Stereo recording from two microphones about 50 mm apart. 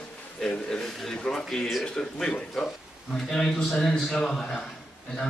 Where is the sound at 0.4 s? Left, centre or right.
Centre.